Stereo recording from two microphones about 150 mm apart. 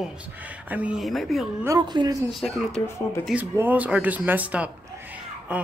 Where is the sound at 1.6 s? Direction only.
25° right (ahead or behind).